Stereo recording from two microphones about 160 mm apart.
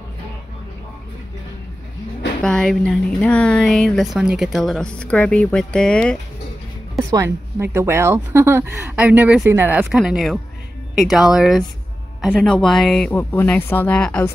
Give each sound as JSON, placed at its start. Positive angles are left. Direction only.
{"t": 2.4, "sound": "a woman's voice", "side_deg": 5}
{"t": 7.0, "sound": "music", "side_deg": -20}
{"t": 7.5, "sound": "a woman's voice", "side_deg": -15}